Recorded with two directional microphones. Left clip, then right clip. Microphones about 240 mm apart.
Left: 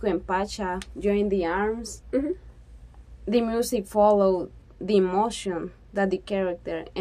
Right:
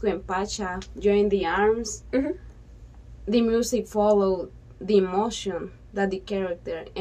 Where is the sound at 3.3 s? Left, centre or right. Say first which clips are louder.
Right 1 dB; left.